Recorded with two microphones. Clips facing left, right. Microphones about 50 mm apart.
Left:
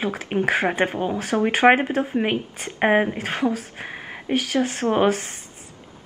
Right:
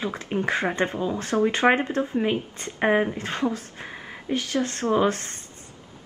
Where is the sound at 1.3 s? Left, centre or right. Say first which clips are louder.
Left 4 dB; centre.